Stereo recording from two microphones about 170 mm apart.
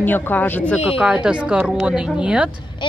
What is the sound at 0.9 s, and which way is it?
A woman's voice, 5° right (ahead or behind).